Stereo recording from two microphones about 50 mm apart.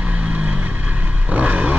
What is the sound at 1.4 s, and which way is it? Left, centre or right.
Vehicle, right.